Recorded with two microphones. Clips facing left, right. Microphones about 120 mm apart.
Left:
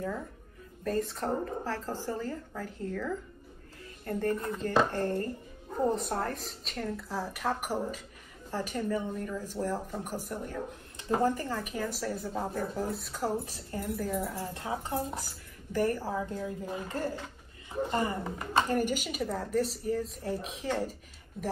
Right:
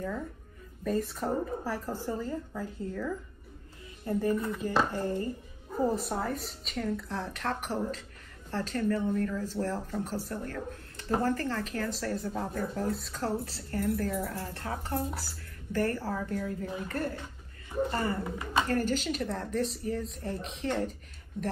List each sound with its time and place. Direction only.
0.8 s speech: centre (ahead or behind)